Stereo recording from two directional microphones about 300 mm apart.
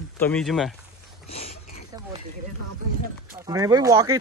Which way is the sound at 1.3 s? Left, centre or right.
Left.